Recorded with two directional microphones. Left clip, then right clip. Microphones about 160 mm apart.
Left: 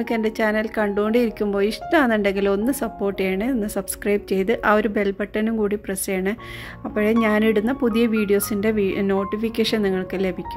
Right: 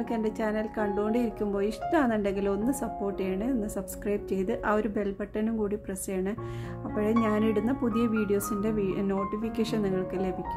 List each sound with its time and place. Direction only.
0.0 s speech: 25° left (ahead or behind)